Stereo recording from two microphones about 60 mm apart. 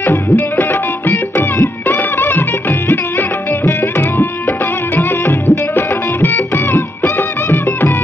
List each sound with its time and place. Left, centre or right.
0.0 s music: left
3.8 s music: left